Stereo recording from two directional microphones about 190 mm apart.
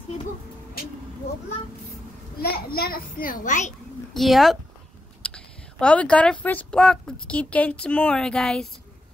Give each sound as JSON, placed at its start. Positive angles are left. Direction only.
{"t": 2.4, "sound": "a child's voice", "side_deg": 55}
{"t": 4.1, "sound": "speech", "side_deg": 0}